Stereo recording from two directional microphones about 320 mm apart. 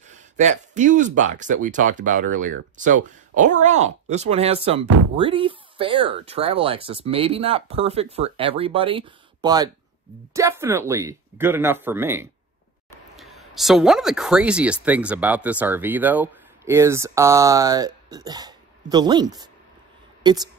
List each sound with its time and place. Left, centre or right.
0.1 s speech: right